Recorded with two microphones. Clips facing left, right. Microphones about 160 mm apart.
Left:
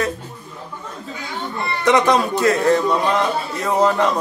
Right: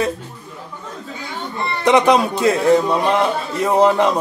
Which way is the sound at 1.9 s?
15° right (ahead or behind).